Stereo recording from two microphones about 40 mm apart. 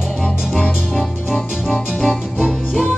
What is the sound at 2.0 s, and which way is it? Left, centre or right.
Music, centre.